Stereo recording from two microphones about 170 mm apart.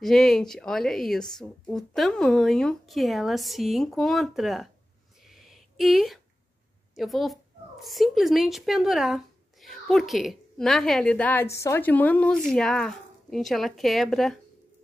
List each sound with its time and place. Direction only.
0.0 s speech: centre (ahead or behind)
5.2 s a sound: centre (ahead or behind)
7.0 s speech: centre (ahead or behind)